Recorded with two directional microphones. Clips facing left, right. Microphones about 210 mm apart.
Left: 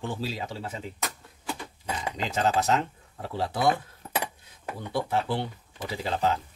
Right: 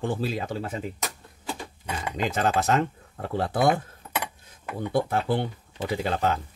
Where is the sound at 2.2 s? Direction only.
55° right (ahead or behind).